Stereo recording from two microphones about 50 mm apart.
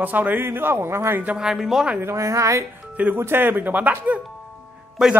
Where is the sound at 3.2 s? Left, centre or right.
Right.